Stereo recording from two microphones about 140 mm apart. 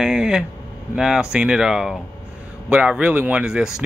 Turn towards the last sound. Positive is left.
turn(degrees=-5)  # may be behind; listen again after turning